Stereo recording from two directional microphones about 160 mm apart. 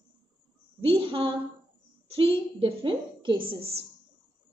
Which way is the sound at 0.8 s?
35° right (ahead or behind).